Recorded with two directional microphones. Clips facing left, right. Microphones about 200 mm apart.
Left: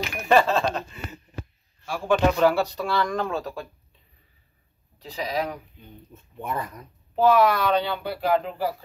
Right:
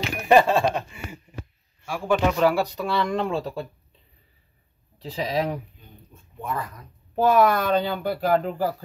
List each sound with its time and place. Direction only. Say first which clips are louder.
0.3 s a sound: right 2 dB; 15° right (ahead or behind)
1.9 s speech: left 1 dB; 10° right (ahead or behind); by 3.6 s 30° right (ahead or behind)
5.1 s speech: right 3 dB; 35° right (ahead or behind)
7.2 s speech: even; 50° right (ahead or behind)